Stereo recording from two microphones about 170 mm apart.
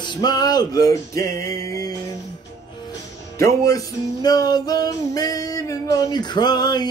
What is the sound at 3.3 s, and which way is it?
Music, 20° left (ahead or behind).